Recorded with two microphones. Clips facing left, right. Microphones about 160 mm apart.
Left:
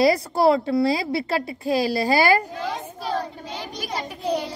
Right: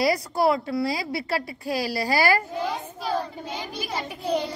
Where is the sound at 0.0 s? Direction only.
25° left (ahead or behind).